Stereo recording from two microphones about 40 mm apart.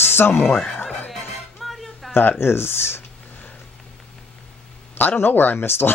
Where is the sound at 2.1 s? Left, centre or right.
Left.